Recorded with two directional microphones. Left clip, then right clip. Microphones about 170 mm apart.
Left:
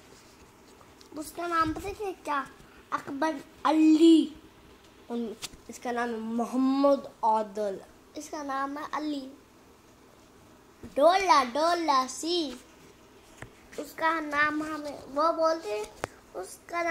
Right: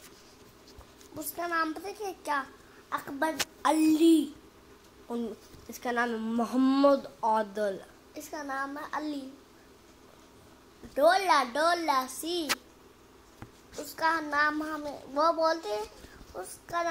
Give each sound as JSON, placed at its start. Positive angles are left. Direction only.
{"t": 1.1, "sound": "a woman's voice", "side_deg": 5}
{"t": 1.9, "sound": "a woman's voice", "side_deg": 15}
{"t": 5.7, "sound": "a woman's voice", "side_deg": -20}
{"t": 8.3, "sound": "a child's voice", "side_deg": 25}
{"t": 11.0, "sound": "a child's voice", "side_deg": 25}
{"t": 13.9, "sound": "child singing", "side_deg": 10}
{"t": 14.3, "sound": "a child's voice", "side_deg": -5}
{"t": 16.6, "sound": "speech", "side_deg": 15}